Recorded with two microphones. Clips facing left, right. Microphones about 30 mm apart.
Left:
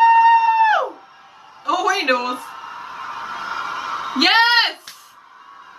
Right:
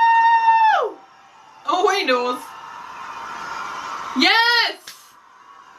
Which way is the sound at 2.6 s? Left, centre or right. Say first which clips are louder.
Left 3 dB; left.